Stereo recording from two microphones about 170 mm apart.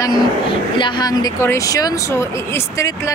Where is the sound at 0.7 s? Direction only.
25° left (ahead or behind).